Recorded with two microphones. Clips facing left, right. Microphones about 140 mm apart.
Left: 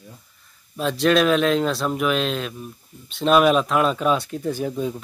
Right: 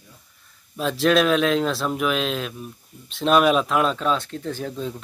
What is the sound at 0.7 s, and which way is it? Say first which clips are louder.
Speech: left 1 dB; centre (ahead or behind).